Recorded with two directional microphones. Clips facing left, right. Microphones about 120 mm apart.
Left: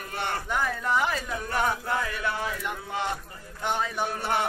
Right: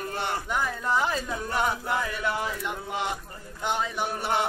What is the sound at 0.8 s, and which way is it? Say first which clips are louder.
A man's voice: even; 25° right (ahead or behind).